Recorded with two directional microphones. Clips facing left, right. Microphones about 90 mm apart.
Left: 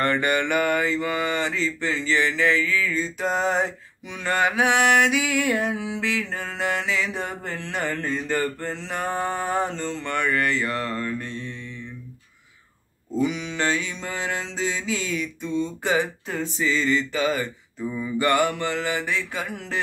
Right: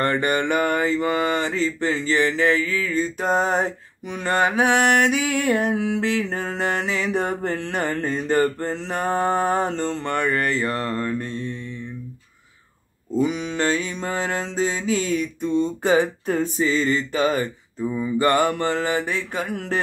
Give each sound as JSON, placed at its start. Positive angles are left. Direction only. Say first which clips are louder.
{"t": 0.0, "sound": "mantra", "louder": "right 1 dB", "side_deg": -35}
{"t": 13.2, "sound": "mantra", "louder": "right 2 dB", "side_deg": -40}
{"t": 17.7, "sound": "mantra", "louder": "right 4 dB", "side_deg": -25}